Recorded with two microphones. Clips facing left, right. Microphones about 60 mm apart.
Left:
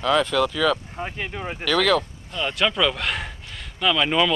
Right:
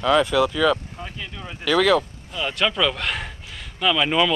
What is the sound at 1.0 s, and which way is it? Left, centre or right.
Speech, left.